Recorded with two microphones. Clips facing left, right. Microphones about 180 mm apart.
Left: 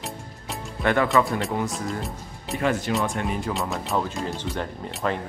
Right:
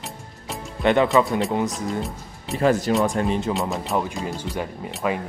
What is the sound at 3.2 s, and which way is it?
Speech, 25° right (ahead or behind).